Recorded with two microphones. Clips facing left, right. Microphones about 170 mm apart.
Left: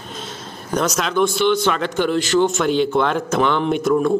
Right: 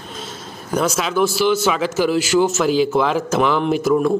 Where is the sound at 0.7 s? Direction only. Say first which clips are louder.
Right 1 dB; 5° right (ahead or behind).